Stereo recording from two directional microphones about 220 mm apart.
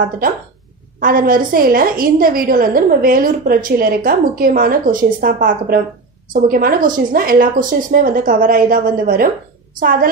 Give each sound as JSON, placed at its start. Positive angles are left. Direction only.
{"t": 0.9, "sound": "a woman's voice", "side_deg": -40}